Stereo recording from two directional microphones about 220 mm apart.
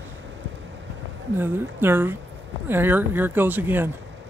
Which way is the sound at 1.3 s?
10° right (ahead or behind).